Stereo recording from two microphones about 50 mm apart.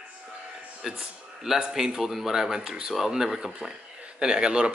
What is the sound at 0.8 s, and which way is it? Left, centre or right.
Speech, centre.